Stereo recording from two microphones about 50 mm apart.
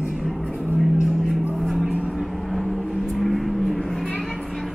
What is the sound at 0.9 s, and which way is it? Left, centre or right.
Vehicle, centre.